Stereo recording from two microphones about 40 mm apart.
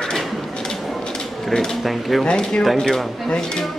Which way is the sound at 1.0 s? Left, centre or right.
Centre.